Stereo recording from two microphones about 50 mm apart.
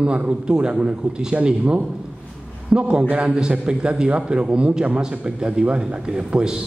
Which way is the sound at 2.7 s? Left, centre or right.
Centre.